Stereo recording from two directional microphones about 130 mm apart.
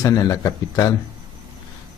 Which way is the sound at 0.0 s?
25° left (ahead or behind).